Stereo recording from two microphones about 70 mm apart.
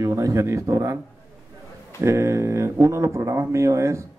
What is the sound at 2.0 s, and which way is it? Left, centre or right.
Speech, right.